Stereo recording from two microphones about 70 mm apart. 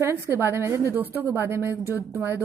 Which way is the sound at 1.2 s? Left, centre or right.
Right.